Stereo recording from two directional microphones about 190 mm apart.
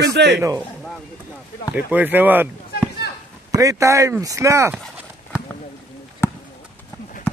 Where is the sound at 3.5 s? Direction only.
15° right (ahead or behind).